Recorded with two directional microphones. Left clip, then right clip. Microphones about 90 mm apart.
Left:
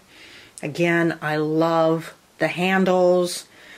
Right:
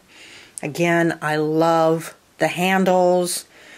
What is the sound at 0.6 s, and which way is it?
Speech, 35° right (ahead or behind).